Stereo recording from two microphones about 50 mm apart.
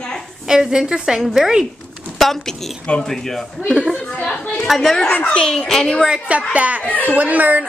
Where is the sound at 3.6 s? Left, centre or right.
Centre.